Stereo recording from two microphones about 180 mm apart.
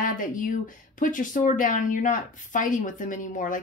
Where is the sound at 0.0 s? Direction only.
50° left (ahead or behind).